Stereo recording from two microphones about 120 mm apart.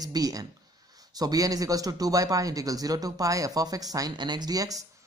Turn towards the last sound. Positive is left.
turn(degrees=-30)  # may be behind; listen again after turning